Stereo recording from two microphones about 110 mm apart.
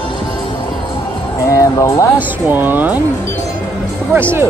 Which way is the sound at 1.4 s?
30° left (ahead or behind).